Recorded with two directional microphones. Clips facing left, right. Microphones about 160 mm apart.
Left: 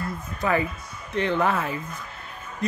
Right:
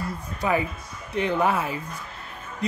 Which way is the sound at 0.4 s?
10° right (ahead or behind).